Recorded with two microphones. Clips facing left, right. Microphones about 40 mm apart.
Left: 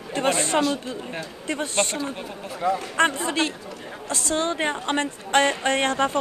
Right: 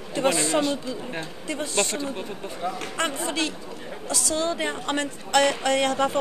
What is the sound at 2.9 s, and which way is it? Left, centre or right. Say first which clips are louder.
A woman's voice: left 4 dB; left.